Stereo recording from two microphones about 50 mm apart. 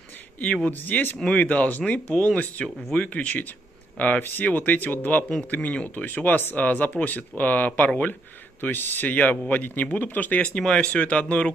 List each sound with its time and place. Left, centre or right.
0.7 s speech: left
1.3 s speech: left
3.1 s speech: left
8.1 s speech: left